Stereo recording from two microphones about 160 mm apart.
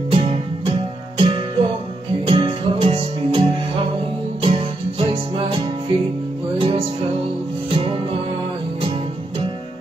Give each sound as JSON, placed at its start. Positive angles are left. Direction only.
{"t": 0.1, "sound": "music", "side_deg": -35}
{"t": 6.6, "sound": "music", "side_deg": -35}